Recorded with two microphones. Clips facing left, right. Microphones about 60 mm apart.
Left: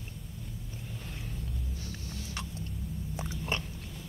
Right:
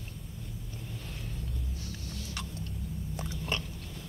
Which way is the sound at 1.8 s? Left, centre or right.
Left.